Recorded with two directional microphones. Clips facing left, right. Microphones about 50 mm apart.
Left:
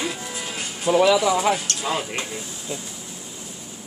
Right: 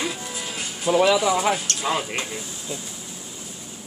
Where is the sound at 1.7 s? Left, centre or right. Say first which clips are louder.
Even; right.